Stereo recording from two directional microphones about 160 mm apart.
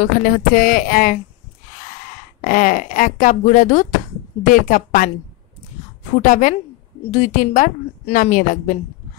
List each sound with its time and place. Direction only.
0.0 s speech: 60° left (ahead or behind)
2.4 s speech: 60° left (ahead or behind)
6.2 s a woman's voice: 55° left (ahead or behind)